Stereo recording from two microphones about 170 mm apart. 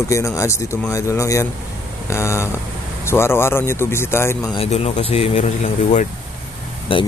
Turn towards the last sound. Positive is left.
turn(degrees=30)  # may be behind; listen again after turning